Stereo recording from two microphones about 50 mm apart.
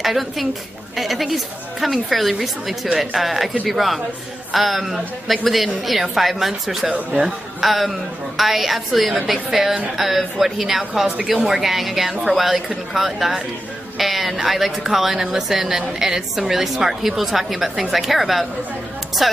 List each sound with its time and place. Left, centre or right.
0.0 s a woman's voice: centre
6.9 s speech: centre
7.2 s a woman's voice: centre